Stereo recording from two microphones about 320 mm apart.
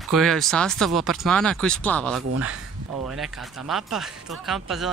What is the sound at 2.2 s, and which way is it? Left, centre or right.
Speech, right.